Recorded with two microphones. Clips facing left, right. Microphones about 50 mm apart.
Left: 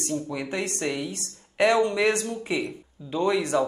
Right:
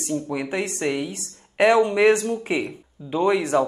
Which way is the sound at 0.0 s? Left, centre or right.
Centre.